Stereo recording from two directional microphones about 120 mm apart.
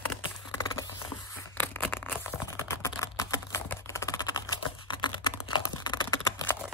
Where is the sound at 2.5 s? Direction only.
25° left (ahead or behind).